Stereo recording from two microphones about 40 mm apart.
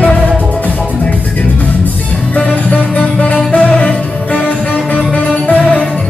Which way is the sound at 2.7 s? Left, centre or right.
Left.